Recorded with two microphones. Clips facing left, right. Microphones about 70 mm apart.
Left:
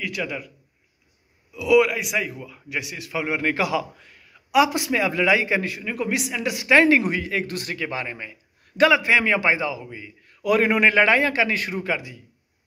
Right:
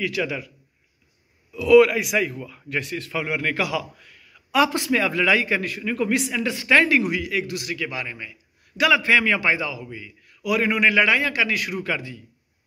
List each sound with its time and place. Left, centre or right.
0.0 s a man's voice: centre
1.5 s a man's voice: centre; by 4.4 s left
4.5 s a man's voice: centre
7.0 s a man's voice: left
8.9 s a man's voice: left